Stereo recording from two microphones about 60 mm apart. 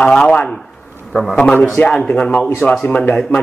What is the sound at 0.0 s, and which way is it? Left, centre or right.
Speech, centre.